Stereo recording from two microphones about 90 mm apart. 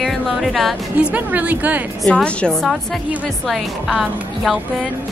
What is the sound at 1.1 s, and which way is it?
Speech, 15° right (ahead or behind).